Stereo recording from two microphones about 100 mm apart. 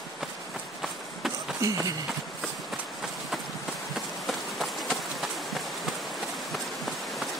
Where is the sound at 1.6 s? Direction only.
35° right (ahead or behind).